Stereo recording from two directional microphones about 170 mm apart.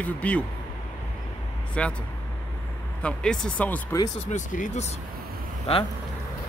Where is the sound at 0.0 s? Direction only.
10° left (ahead or behind).